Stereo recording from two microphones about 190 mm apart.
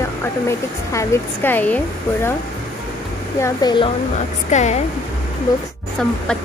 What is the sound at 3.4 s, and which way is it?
Speech, 25° left (ahead or behind).